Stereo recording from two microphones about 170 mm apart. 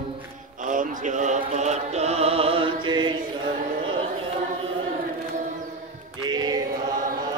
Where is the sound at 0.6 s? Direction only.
50° right (ahead or behind); by 3.2 s 25° right (ahead or behind).